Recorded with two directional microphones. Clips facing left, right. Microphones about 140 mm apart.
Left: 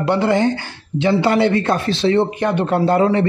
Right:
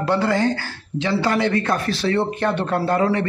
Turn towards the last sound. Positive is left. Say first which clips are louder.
# left 4 dB
turn(degrees=25)  # may be behind; listen again after turning